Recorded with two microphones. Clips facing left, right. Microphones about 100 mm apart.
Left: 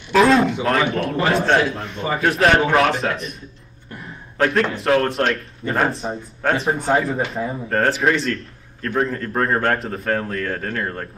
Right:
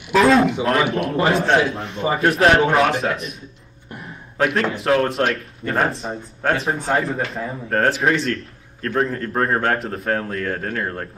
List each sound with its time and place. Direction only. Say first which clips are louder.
0.1 s speech: even; centre (ahead or behind)
1.8 s a man's voice: right 2 dB; 30° right (ahead or behind)
2.1 s speech: right 1 dB; centre (ahead or behind)
4.6 s speech: even; centre (ahead or behind)